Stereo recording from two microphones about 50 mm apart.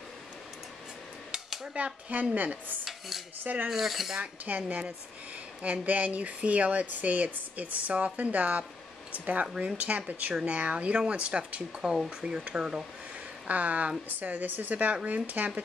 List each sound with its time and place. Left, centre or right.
1.7 s speech: centre
2.3 s speech: right
3.7 s filing: centre
4.2 s speech: right
11.8 s speech: centre
13.5 s speech: right